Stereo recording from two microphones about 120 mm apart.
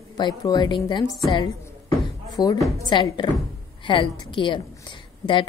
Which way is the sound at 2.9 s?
40° left (ahead or behind).